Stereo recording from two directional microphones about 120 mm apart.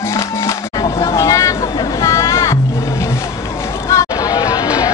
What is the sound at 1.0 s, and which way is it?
Vehicle, 25° left (ahead or behind).